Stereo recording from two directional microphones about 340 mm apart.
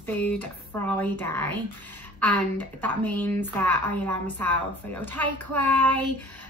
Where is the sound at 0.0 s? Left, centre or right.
Centre.